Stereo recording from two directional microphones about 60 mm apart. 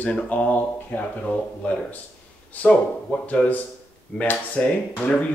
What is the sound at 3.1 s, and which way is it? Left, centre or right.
Speech, left.